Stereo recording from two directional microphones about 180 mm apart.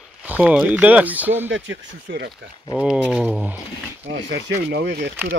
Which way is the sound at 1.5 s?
90° right.